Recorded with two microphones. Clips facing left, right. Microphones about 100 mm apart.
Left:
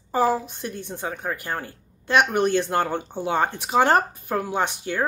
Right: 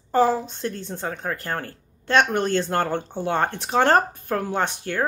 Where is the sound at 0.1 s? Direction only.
10° left (ahead or behind).